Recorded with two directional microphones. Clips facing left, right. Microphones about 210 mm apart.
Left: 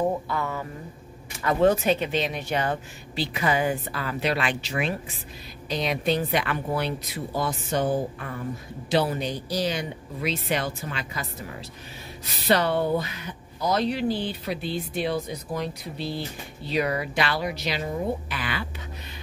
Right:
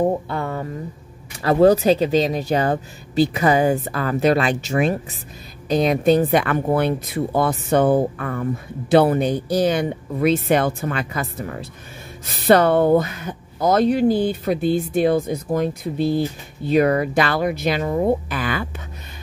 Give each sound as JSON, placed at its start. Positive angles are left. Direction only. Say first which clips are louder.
{"t": 0.0, "sound": "speech", "louder": "right 5 dB", "side_deg": -30}